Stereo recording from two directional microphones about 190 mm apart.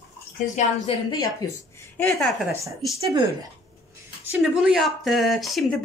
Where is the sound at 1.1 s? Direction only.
20° left (ahead or behind).